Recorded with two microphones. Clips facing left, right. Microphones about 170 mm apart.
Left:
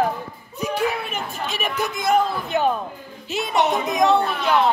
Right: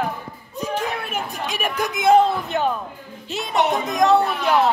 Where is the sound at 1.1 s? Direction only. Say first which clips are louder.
Right 1 dB; 10° right (ahead or behind).